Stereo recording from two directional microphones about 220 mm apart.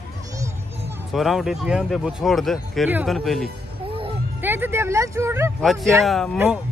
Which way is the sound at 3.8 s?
25° right (ahead or behind).